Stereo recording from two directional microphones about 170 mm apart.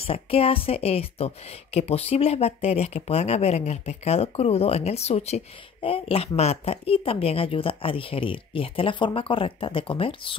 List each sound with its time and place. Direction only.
0.0 s a woman's voice: 35° left (ahead or behind)